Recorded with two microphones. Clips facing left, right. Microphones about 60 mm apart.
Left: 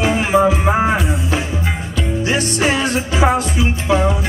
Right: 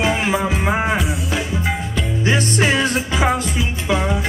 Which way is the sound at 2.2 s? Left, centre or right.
Right.